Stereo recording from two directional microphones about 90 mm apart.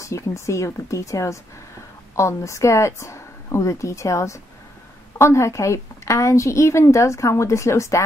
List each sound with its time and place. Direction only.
0.0 s a woman's voice: 35° left (ahead or behind)